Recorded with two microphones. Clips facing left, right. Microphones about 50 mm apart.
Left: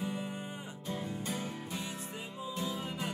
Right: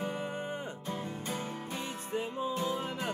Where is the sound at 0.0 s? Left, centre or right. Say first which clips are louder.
Right 3 dB; right.